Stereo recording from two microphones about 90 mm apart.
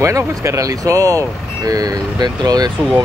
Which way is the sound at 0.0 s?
35° right (ahead or behind).